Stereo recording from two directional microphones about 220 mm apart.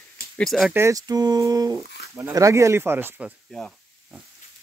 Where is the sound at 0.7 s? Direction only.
15° right (ahead or behind).